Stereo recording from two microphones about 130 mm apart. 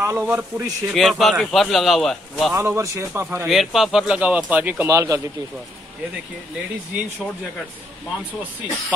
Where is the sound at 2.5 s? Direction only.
20° right (ahead or behind).